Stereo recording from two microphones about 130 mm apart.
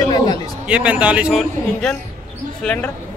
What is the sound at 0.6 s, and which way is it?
Speech, 10° right (ahead or behind).